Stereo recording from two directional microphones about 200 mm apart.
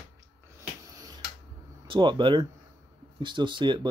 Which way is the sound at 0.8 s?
20° right (ahead or behind).